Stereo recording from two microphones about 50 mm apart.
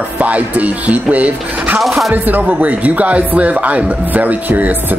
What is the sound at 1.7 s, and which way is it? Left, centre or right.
Speech, centre.